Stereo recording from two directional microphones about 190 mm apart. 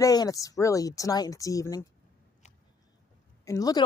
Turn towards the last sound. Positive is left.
turn(degrees=20)  # may be behind; listen again after turning